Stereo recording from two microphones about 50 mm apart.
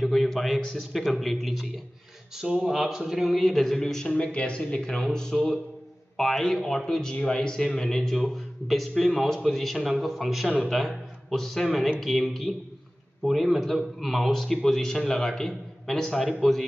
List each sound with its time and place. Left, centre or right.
0.0 s a sound: centre
0.7 s a man's voice: centre
2.3 s a man's voice: centre
5.3 s a man's voice: centre